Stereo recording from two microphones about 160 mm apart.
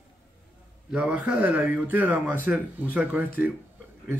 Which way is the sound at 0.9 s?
5° right (ahead or behind).